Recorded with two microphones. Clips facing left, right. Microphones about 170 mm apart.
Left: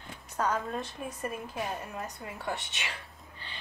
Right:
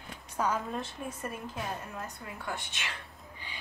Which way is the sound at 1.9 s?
20° left (ahead or behind).